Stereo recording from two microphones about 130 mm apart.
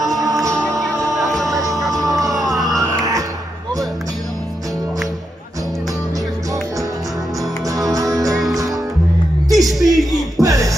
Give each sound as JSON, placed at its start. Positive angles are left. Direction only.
{"t": 0.2, "sound": "music", "side_deg": -25}
{"t": 1.6, "sound": "music", "side_deg": 0}
{"t": 2.0, "sound": "music", "side_deg": -25}
{"t": 7.9, "sound": "music", "side_deg": -25}
{"t": 9.5, "sound": "music", "side_deg": 0}
{"t": 10.4, "sound": "music", "side_deg": -25}